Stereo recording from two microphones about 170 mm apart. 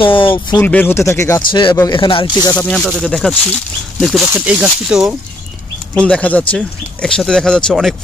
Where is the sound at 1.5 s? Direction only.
25° left (ahead or behind).